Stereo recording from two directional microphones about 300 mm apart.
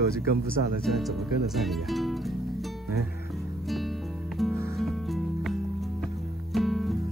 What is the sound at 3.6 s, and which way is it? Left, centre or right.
Music, centre.